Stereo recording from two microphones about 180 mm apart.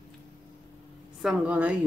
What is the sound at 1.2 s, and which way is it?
Speech, 10° right (ahead or behind).